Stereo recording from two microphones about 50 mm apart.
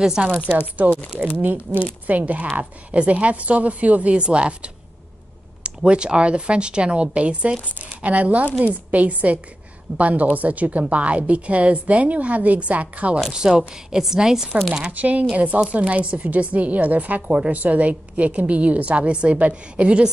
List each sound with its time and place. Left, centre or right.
0.2 s speech: right
5.9 s speech: right
13.3 s a woman's voice: centre
14.9 s speech: right